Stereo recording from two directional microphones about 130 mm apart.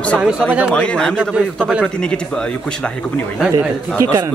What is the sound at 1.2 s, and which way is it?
Speech, 5° right (ahead or behind).